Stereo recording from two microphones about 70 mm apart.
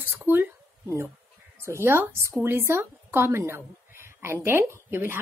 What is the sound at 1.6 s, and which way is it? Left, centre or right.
A woman's voice, right.